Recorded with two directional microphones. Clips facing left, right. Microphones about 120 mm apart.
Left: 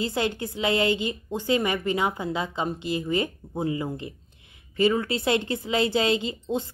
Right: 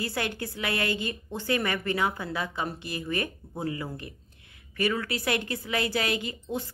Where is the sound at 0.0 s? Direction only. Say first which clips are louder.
Left 5 dB; 20° left (ahead or behind).